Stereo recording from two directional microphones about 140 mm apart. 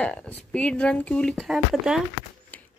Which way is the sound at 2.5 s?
10° left (ahead or behind).